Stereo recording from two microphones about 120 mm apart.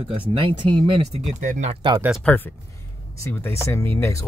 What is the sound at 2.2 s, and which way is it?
Speech, 10° left (ahead or behind).